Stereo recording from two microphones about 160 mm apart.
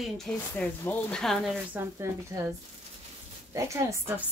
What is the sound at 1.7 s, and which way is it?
Speech, 15° right (ahead or behind).